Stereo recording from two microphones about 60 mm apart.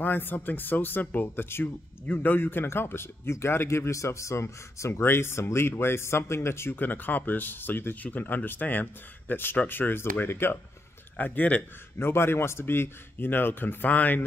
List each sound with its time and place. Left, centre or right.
0.0 s a man's voice: left
6.8 s speech: left
11.1 s a man's voice: left
12.0 s speech: left